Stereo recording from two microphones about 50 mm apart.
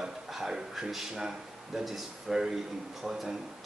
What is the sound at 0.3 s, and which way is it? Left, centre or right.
A man's voice, centre.